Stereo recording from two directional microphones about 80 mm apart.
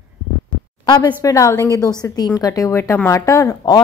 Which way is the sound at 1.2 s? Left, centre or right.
Left.